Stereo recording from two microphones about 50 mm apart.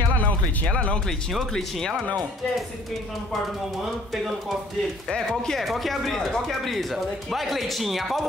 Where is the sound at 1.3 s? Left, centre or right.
Centre.